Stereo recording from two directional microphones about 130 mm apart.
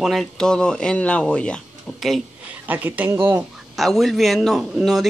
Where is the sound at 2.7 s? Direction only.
15° right (ahead or behind).